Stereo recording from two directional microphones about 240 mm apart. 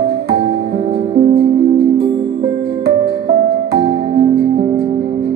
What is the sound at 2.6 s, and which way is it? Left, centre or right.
Music, right.